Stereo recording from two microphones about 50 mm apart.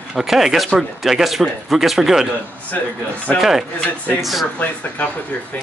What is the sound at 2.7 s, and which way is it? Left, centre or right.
Speech, left.